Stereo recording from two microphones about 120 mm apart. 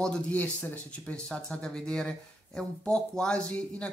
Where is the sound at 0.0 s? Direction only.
10° left (ahead or behind).